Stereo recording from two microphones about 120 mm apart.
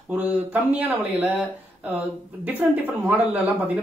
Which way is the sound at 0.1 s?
15° right (ahead or behind).